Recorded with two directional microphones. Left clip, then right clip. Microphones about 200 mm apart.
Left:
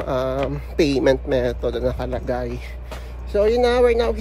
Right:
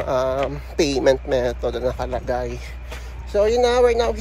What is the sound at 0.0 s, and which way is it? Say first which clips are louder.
Speech: right 2 dB; 10° left (ahead or behind).